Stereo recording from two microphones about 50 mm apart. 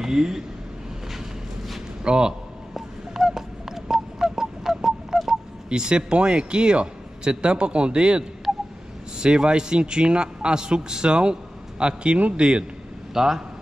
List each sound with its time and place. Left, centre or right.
0.0 s speech: centre
2.0 s a sound: centre
5.7 s a man's voice: centre
13.1 s a man's voice: centre